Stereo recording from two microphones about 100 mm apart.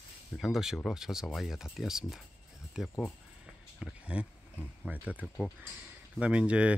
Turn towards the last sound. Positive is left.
turn(degrees=-10)  # may be behind; listen again after turning